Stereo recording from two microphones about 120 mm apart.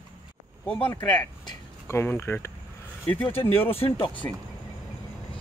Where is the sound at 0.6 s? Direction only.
10° left (ahead or behind).